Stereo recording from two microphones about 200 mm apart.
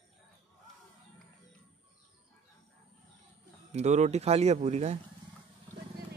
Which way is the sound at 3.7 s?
35° right (ahead or behind).